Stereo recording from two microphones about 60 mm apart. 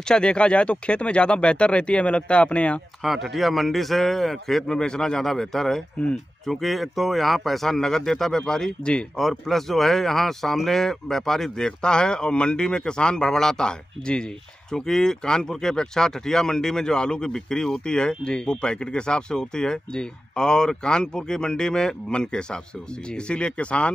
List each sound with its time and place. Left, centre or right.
0.1 s speech: centre
3.0 s a man's voice: centre